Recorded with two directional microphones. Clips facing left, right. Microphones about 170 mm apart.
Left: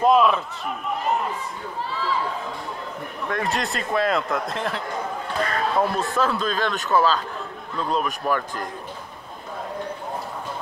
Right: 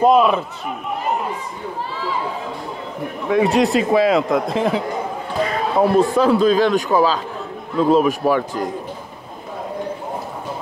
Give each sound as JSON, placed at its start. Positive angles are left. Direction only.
{"t": 0.0, "sound": "a man's voice", "side_deg": 0}
{"t": 3.3, "sound": "a man's voice", "side_deg": 0}
{"t": 5.4, "sound": "a sound", "side_deg": -5}
{"t": 6.1, "sound": "a man's voice", "side_deg": -15}